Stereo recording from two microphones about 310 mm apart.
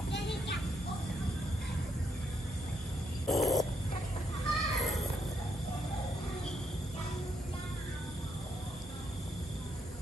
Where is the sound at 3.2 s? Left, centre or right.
Centre.